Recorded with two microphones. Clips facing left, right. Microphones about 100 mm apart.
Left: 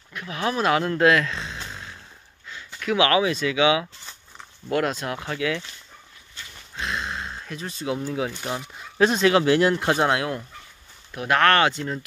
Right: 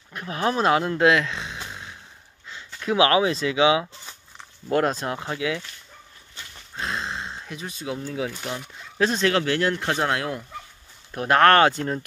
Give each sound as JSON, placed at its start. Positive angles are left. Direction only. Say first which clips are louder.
{"t": 0.1, "sound": "speech", "louder": "right 2 dB", "side_deg": -35}
{"t": 0.7, "sound": "a sound", "louder": "even", "side_deg": -20}
{"t": 2.5, "sound": "speech", "louder": "right 1 dB", "side_deg": -25}
{"t": 5.2, "sound": "speech", "louder": "left 3 dB", "side_deg": -15}
{"t": 6.8, "sound": "a sound", "louder": "even", "side_deg": -30}
{"t": 7.8, "sound": "speech", "louder": "left 3 dB", "side_deg": 5}
{"t": 9.4, "sound": "speech", "louder": "left 4 dB", "side_deg": 15}
{"t": 11.1, "sound": "speech", "louder": "right 3 dB", "side_deg": -35}